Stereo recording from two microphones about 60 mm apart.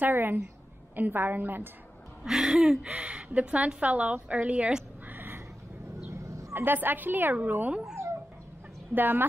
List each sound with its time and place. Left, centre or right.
0.0 s a woman's voice: right
2.2 s a sound: centre
2.9 s a woman's voice: centre
5.0 s a sound: right
6.0 s vehicle: right
6.5 s a woman's voice: right
8.9 s a woman's voice: right